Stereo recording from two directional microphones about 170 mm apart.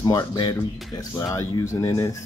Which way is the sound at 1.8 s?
20° left (ahead or behind).